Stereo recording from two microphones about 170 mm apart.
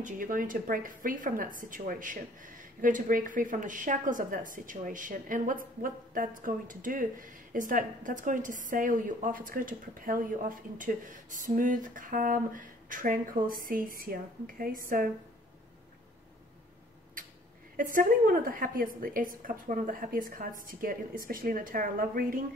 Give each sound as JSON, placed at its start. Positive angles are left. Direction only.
{"t": 0.0, "sound": "a woman's voice", "side_deg": -50}
{"t": 17.7, "sound": "a woman's voice", "side_deg": -55}